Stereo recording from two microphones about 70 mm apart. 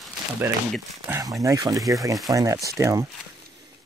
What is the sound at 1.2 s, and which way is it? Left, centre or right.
Speech, right.